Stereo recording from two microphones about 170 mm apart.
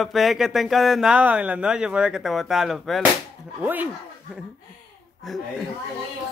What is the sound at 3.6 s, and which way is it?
Speech, 10° right (ahead or behind).